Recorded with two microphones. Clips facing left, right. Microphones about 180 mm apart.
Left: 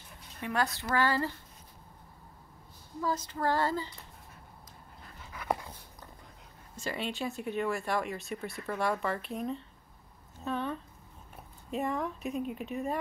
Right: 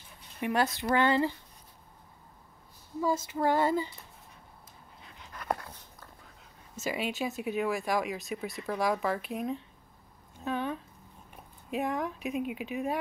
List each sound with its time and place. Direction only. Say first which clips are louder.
0.4 s speech: right 3 dB; 15° right (ahead or behind)
3.0 s speech: right 4 dB; 15° right (ahead or behind)
5.0 s dog: even; 5° left (ahead or behind)
6.8 s speech: right 3 dB; 5° right (ahead or behind)
7.8 s speech: right 2 dB; 15° right (ahead or behind)
8.1 s speech: right 2 dB; centre (ahead or behind)
8.7 s speech: right 2 dB; 10° right (ahead or behind)